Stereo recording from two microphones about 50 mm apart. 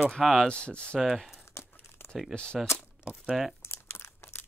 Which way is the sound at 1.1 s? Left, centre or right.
Centre.